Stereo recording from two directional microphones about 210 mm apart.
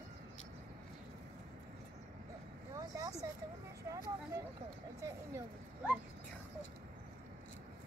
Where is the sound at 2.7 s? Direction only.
15° right (ahead or behind).